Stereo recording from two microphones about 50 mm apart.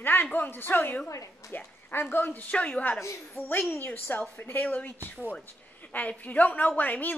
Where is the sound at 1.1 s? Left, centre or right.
Left.